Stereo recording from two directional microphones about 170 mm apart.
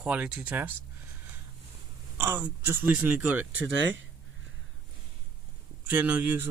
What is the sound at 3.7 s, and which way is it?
Speech, 90° right.